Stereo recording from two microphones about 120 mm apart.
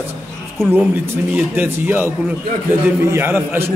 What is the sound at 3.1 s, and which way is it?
Speech, 15° right (ahead or behind).